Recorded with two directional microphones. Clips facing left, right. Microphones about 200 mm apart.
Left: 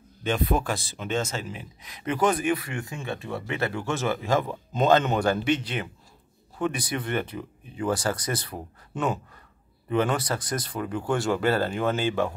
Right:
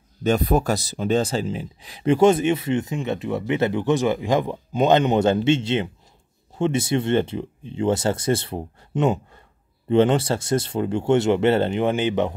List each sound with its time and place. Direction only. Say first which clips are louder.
0.2 s speech: right 6 dB; 40° right (ahead or behind); by 12.4 s 20° right (ahead or behind)